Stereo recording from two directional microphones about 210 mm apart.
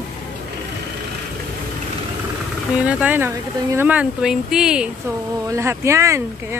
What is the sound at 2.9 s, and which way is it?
Speech, 5° right (ahead or behind).